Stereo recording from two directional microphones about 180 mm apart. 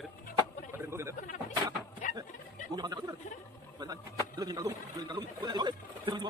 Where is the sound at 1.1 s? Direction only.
45° left (ahead or behind).